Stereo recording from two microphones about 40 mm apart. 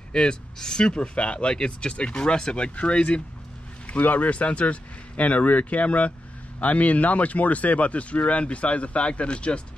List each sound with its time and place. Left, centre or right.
0.1 s speech: centre